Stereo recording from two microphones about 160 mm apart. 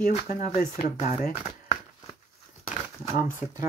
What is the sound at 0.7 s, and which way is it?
Speech, 45° left (ahead or behind).